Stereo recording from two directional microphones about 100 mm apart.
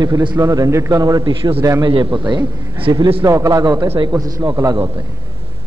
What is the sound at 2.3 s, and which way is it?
Speech, 50° right (ahead or behind).